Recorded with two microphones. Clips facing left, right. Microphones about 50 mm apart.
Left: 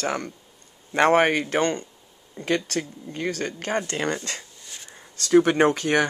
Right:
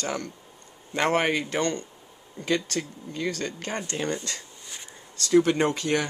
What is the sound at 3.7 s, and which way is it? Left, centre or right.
Speech, left.